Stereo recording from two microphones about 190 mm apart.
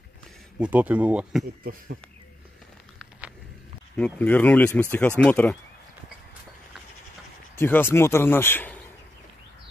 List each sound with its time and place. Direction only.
0.6 s speech: 5° right (ahead or behind)
1.4 s speech: 50° right (ahead or behind)
3.9 s speech: 10° left (ahead or behind)
7.5 s speech: 10° left (ahead or behind)